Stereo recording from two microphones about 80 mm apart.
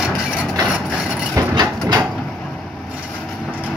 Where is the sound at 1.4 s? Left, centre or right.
Right.